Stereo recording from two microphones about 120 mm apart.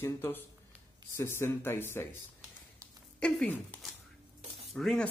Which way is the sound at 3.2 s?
10° left (ahead or behind).